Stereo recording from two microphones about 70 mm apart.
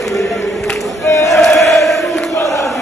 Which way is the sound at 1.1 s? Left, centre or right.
Left.